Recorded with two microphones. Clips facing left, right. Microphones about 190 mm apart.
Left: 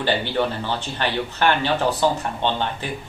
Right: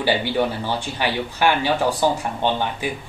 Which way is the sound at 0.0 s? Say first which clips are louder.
Right 1 dB; 10° right (ahead or behind).